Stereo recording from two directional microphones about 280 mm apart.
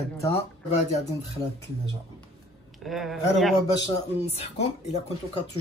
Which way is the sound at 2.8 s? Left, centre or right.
Centre.